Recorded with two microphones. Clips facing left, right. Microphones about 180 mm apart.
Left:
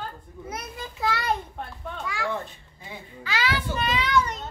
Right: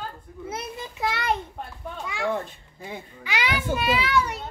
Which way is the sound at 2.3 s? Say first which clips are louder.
Right 3 dB; 45° right (ahead or behind).